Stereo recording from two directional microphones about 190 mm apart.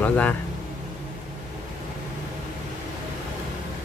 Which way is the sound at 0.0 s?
10° left (ahead or behind).